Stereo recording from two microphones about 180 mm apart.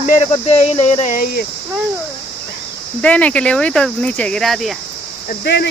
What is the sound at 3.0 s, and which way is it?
Speech, 5° left (ahead or behind).